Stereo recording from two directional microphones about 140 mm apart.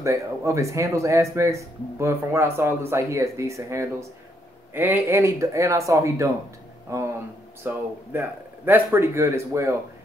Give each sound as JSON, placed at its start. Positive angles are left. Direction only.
{"t": 0.0, "sound": "speech", "side_deg": -20}